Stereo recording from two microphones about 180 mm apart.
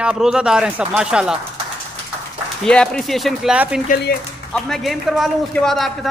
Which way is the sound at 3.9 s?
60° left (ahead or behind).